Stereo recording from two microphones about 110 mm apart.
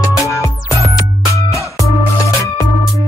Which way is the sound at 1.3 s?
30° left (ahead or behind).